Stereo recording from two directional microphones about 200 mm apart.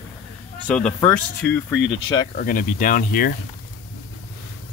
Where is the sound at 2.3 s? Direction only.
45° left (ahead or behind).